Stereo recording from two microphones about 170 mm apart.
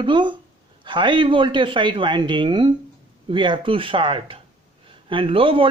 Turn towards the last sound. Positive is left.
turn(degrees=-30)  # may be behind; listen again after turning